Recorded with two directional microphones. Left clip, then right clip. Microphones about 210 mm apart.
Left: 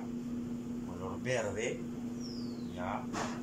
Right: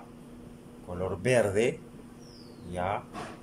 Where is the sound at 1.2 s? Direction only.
55° right (ahead or behind).